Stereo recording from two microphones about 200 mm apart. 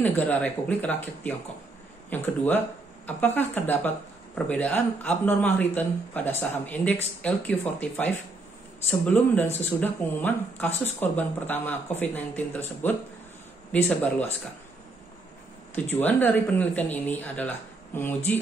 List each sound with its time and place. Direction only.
0.0 s a man's voice: 10° left (ahead or behind)
15.7 s a man's voice: 10° left (ahead or behind)